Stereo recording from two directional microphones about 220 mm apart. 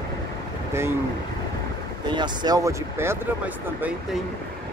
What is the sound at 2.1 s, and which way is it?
Speech, 20° right (ahead or behind).